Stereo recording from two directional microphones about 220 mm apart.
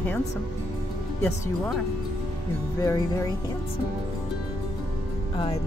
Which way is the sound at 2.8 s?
15° left (ahead or behind).